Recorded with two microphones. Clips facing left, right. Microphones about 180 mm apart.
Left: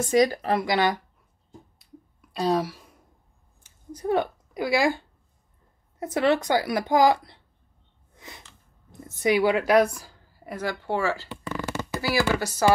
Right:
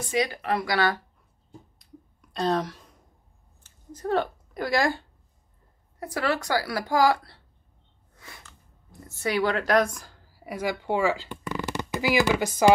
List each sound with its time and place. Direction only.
0.0 s speech: 40° left (ahead or behind)
0.7 s a woman's voice: 20° left (ahead or behind)
1.8 s clicking: 5° left (ahead or behind)
3.6 s a sound: 10° left (ahead or behind)
5.9 s a woman's voice: 20° left (ahead or behind)
8.2 s a sound: 20° left (ahead or behind)
9.0 s a woman's voice: 15° left (ahead or behind); by 12.7 s 15° right (ahead or behind)